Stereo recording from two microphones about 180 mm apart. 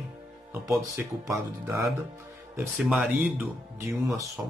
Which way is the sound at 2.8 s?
Centre (ahead or behind).